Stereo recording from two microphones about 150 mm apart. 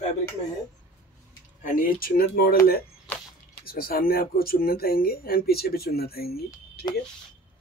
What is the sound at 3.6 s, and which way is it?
Speech, 85° left.